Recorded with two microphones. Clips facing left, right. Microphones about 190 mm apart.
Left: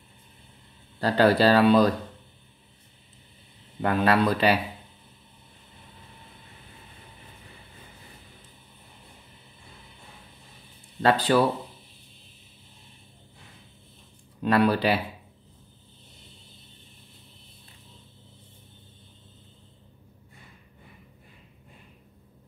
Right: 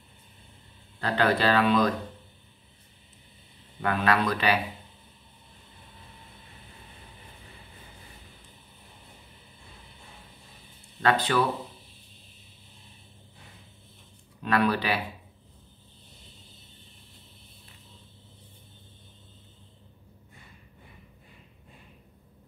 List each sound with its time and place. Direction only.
1.0 s speech: 35° left (ahead or behind)
3.8 s speech: 30° left (ahead or behind)
11.0 s speech: 30° left (ahead or behind)
14.4 s speech: 30° left (ahead or behind)